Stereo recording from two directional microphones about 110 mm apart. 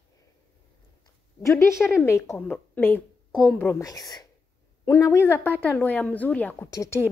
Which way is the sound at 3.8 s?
35° left (ahead or behind).